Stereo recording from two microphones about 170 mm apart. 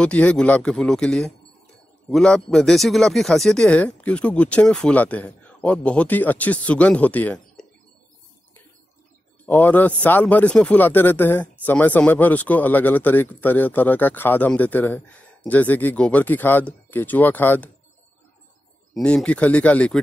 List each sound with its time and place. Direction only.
0.0 s speech: 5° left (ahead or behind)
9.5 s speech: 10° left (ahead or behind)
18.9 s speech: 5° left (ahead or behind)